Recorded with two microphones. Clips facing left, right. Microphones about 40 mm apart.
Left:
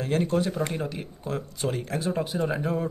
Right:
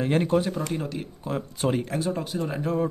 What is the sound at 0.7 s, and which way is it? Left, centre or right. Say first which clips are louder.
Speech: right 1 dB; centre.